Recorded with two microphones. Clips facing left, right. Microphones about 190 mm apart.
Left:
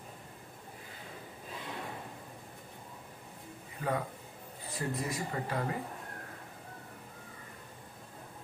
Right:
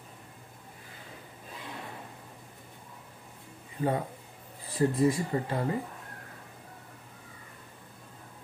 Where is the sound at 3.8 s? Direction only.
30° right (ahead or behind).